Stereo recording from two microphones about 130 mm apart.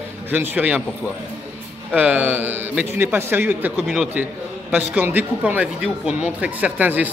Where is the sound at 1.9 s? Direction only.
10° right (ahead or behind).